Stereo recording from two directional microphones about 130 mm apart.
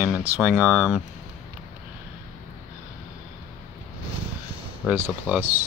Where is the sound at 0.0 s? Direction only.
10° right (ahead or behind).